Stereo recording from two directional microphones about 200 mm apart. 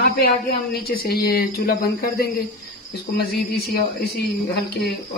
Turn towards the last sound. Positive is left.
turn(degrees=55)  # may be behind; listen again after turning